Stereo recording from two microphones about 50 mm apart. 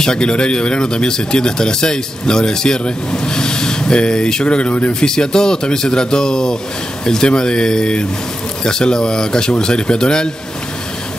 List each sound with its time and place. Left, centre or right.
0.0 s speech: centre
5.0 s speech: centre